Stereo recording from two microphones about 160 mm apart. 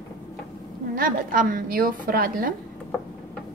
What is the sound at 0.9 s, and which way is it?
A woman's voice, 60° right (ahead or behind).